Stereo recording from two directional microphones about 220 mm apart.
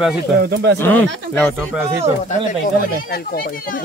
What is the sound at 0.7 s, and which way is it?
Speech, 10° left (ahead or behind).